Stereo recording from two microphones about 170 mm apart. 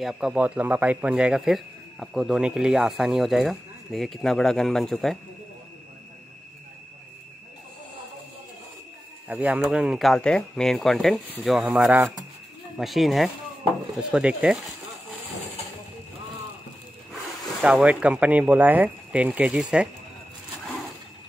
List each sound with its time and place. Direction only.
0.0 s speech: centre (ahead or behind)
9.3 s speech: 10° right (ahead or behind)
17.1 s speech: 5° right (ahead or behind)